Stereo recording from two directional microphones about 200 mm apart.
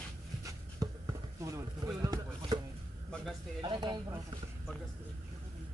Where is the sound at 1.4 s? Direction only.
15° right (ahead or behind).